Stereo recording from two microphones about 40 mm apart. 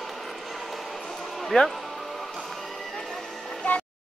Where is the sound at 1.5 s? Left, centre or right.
Centre.